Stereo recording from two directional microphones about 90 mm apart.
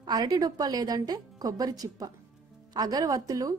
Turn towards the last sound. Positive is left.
turn(degrees=-40)  # may be behind; listen again after turning